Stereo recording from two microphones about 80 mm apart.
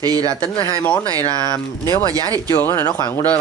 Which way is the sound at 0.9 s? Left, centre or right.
Left.